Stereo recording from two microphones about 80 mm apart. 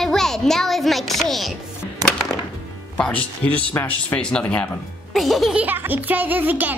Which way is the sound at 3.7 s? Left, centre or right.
Left.